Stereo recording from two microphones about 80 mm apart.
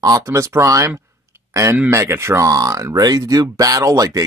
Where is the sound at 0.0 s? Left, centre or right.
Right.